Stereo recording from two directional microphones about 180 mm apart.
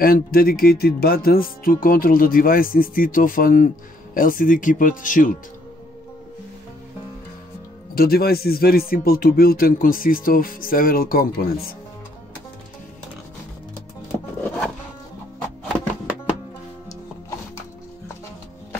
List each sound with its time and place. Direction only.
0.0 s speech: 55° left (ahead or behind)
7.9 s speech: 55° left (ahead or behind)